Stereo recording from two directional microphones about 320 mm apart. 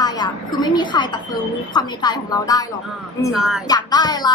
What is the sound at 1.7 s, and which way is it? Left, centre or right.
Speech, centre.